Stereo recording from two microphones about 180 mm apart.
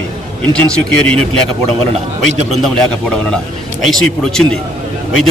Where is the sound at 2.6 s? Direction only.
5° left (ahead or behind).